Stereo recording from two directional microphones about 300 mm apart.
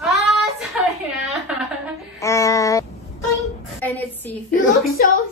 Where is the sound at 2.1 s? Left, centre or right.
Centre.